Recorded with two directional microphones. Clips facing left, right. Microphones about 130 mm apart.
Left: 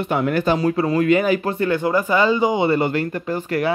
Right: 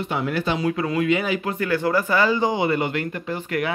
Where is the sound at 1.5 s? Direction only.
30° left (ahead or behind).